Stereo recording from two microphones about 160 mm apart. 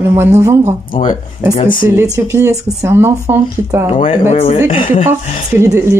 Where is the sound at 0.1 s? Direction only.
15° right (ahead or behind).